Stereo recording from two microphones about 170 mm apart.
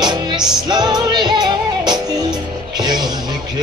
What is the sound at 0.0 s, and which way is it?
Music, 25° right (ahead or behind).